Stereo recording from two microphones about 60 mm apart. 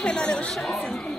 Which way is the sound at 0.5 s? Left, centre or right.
Centre.